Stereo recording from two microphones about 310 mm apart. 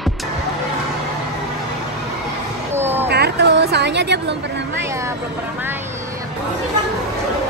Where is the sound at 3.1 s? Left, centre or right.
Right.